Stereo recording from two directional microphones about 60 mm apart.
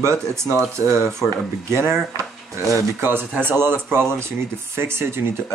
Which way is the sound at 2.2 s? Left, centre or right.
Right.